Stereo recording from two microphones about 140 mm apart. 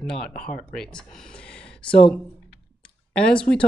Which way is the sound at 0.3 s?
85° left.